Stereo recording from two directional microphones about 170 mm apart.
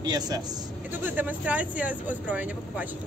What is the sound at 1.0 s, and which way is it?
Speech, 10° right (ahead or behind).